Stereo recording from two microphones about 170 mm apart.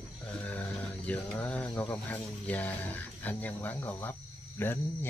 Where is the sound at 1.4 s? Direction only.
10° left (ahead or behind).